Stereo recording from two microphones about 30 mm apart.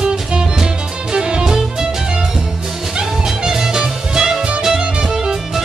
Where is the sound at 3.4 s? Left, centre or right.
Centre.